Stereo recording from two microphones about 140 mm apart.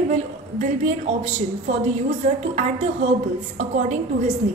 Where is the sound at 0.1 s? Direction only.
60° right (ahead or behind).